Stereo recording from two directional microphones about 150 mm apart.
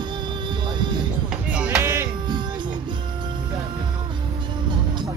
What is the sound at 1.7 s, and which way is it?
Music, 15° right (ahead or behind).